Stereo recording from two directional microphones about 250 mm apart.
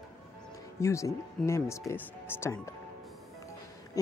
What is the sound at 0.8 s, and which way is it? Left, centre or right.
Speech, centre.